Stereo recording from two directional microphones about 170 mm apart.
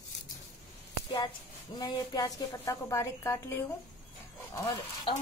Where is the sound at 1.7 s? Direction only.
25° left (ahead or behind).